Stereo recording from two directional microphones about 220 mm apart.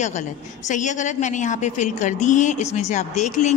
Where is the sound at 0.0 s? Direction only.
35° left (ahead or behind).